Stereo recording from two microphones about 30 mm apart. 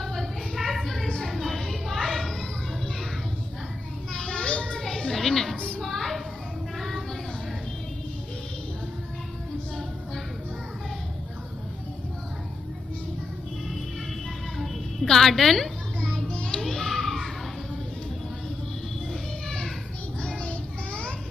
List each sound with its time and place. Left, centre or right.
0.0 s a sound: centre
4.1 s children playing: left
4.7 s children playing: centre
5.8 s child singing: centre
15.0 s a woman's voice: centre
16.6 s children playing: centre
20.2 s a sound: left